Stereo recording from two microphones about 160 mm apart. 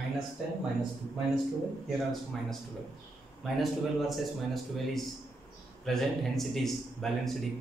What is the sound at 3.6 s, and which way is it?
Speech, centre (ahead or behind).